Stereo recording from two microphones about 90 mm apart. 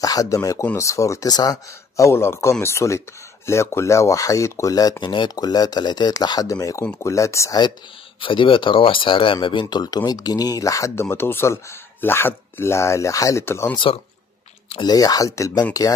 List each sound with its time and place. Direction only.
0.0 s speech: 40° left (ahead or behind)
1.7 s speech: 30° left (ahead or behind)
5.0 s speech: 60° left (ahead or behind); by 7.5 s 35° left (ahead or behind)
8.2 s speech: 70° left (ahead or behind); by 13.7 s 30° left (ahead or behind)
14.8 s speech: 45° left (ahead or behind)